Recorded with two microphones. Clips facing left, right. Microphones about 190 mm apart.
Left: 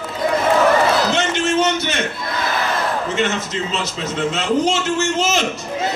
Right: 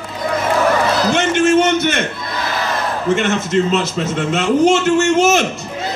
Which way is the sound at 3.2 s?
55° right (ahead or behind).